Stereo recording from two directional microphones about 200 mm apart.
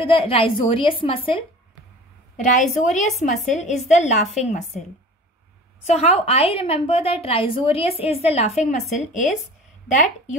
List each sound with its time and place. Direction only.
0.0 s a woman's voice: 25° left (ahead or behind)
2.3 s a woman's voice: 40° left (ahead or behind)
5.9 s a woman's voice: 35° left (ahead or behind)